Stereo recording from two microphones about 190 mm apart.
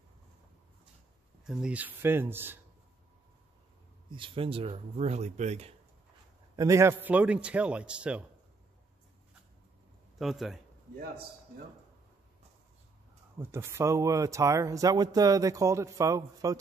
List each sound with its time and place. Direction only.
1.4 s speech: 5° right (ahead or behind)
4.1 s speech: 25° right (ahead or behind)
6.5 s speech: 15° right (ahead or behind)
10.1 s speech: centre (ahead or behind)
13.4 s speech: 15° right (ahead or behind)